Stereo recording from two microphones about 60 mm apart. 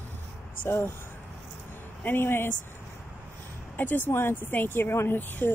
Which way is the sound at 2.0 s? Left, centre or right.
Left.